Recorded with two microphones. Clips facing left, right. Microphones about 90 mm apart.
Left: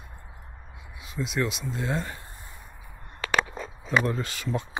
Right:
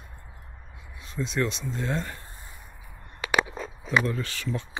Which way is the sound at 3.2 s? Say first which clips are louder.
Right 1 dB; 15° right (ahead or behind).